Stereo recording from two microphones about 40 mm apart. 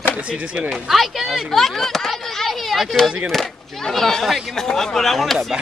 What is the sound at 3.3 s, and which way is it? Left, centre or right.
Speech, centre.